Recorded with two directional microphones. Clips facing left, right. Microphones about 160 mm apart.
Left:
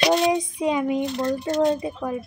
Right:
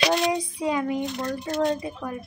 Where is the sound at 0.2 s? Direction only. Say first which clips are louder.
Left 4 dB; 20° left (ahead or behind).